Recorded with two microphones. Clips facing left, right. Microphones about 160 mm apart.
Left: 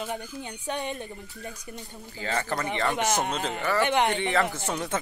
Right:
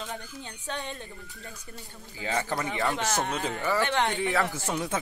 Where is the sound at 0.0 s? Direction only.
15° left (ahead or behind).